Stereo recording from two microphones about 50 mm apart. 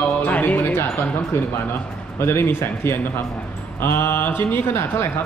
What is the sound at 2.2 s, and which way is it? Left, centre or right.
Speech, left.